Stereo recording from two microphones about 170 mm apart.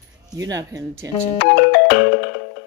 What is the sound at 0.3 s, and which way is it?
Speech, 20° right (ahead or behind).